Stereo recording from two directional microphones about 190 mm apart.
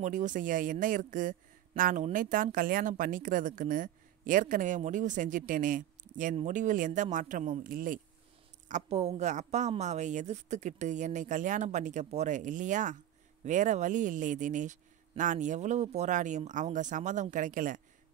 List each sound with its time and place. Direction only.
0.0 s a woman's voice: 40° right (ahead or behind)
8.6 s speech: 35° right (ahead or behind)